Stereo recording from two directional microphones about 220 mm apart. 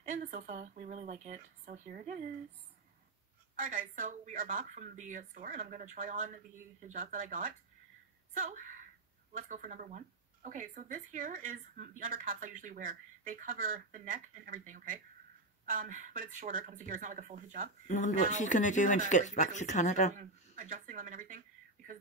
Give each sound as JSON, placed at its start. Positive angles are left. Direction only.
{"t": 0.0, "sound": "speech", "side_deg": -35}
{"t": 3.5, "sound": "speech", "side_deg": -35}
{"t": 17.8, "sound": "speech", "side_deg": 35}
{"t": 20.2, "sound": "speech", "side_deg": -35}